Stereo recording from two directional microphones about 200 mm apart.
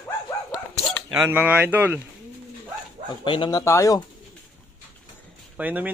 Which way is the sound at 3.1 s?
25° left (ahead or behind).